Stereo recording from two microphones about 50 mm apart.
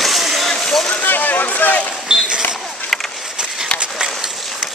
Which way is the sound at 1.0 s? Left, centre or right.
Left.